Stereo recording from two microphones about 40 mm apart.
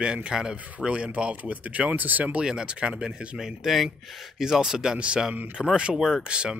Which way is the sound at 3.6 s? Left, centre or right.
Centre.